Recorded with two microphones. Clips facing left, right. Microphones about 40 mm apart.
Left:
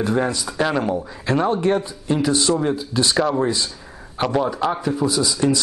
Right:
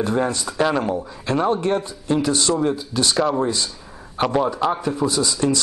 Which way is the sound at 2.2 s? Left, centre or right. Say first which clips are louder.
Left 2 dB; centre.